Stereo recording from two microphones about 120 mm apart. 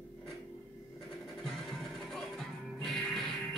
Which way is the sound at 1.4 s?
Centre (ahead or behind).